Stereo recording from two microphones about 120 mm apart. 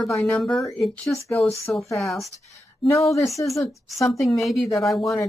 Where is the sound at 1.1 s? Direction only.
25° left (ahead or behind).